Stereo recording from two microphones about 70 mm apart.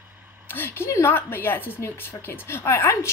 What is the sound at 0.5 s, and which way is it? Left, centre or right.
A woman's voice, left.